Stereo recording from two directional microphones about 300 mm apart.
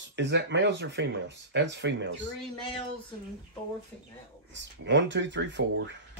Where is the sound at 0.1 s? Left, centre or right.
Right.